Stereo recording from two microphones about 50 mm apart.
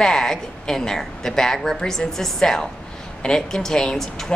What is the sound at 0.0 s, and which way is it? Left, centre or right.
Speech, centre.